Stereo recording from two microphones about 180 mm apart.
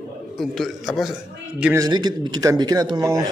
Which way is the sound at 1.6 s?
15° right (ahead or behind).